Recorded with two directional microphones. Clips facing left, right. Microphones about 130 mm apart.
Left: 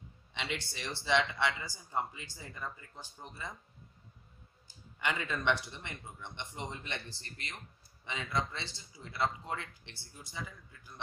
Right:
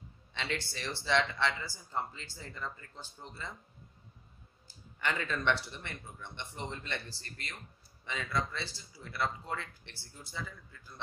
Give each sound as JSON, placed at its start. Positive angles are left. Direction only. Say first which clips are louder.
{"t": 0.3, "sound": "speech", "louder": "right 2 dB", "side_deg": 15}
{"t": 4.6, "sound": "speech", "louder": "even", "side_deg": 15}